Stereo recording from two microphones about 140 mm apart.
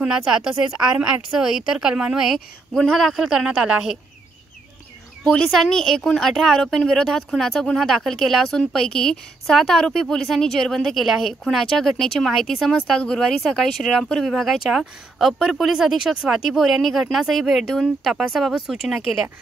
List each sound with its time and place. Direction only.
0.0 s speech: 5° right (ahead or behind)
5.2 s speech: centre (ahead or behind)